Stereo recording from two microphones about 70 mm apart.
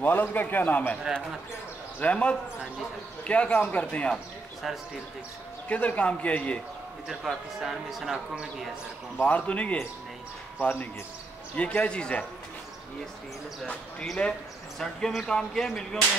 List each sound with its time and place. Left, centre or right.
0.0 s a man's voice: left
2.0 s a man's voice: centre
4.6 s a man's voice: centre
5.7 s a man's voice: left
7.2 s a man's voice: centre
9.2 s a man's voice: left
14.0 s a man's voice: centre